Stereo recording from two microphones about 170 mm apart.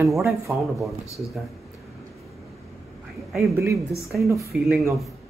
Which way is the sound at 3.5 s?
20° right (ahead or behind).